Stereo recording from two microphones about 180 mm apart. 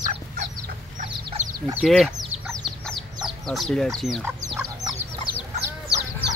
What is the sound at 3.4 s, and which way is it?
Speech, 5° left (ahead or behind).